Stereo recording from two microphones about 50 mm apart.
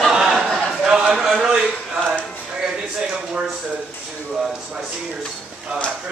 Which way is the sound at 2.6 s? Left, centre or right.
Centre.